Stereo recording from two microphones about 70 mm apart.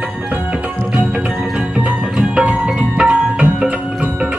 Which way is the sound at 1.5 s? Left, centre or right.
Centre.